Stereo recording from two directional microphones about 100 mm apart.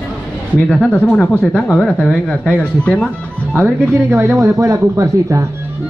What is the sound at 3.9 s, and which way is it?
Speech, 25° right (ahead or behind).